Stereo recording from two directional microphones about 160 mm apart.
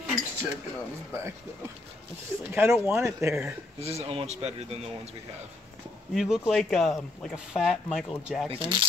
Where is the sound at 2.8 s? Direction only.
15° right (ahead or behind).